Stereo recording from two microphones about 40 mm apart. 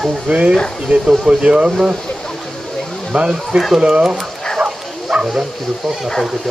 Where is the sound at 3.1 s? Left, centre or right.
Right.